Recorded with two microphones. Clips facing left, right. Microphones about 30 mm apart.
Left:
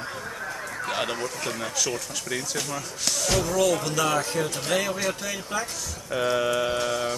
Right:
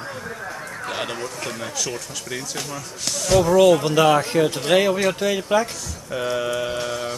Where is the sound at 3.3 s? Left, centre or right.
Right.